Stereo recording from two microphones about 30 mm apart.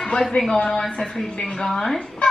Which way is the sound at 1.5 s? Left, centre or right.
Centre.